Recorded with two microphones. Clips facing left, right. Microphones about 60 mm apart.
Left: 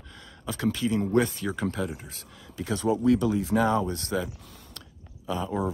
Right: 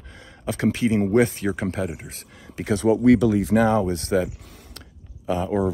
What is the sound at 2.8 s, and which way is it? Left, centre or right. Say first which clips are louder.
Speech: right 6 dB; right.